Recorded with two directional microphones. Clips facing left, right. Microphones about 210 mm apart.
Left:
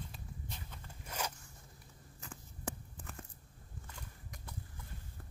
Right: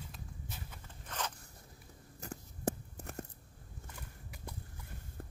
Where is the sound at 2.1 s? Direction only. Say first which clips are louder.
Right 6 dB; 40° right (ahead or behind).